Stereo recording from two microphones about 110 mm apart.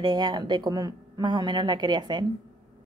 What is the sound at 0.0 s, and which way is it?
Speech, 45° right (ahead or behind).